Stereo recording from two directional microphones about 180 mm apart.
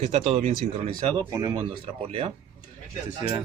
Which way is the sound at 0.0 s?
40° right (ahead or behind).